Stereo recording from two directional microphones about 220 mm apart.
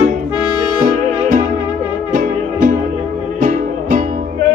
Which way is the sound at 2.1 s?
35° right (ahead or behind).